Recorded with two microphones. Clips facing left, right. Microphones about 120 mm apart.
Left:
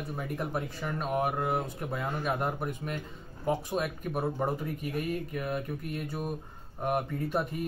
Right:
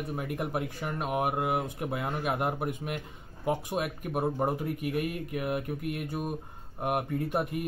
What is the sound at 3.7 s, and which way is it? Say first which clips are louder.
Speech: even; 15° right (ahead or behind).